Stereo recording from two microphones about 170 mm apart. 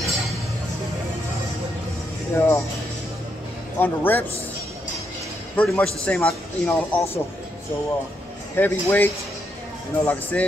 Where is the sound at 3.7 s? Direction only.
10° left (ahead or behind).